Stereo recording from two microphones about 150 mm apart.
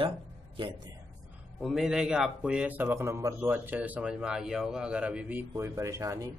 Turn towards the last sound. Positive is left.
turn(degrees=-20)  # may be behind; listen again after turning